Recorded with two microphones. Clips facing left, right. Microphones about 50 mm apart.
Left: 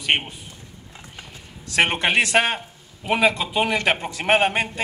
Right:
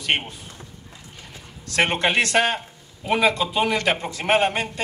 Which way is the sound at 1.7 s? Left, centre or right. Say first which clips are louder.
Left 1 dB; left.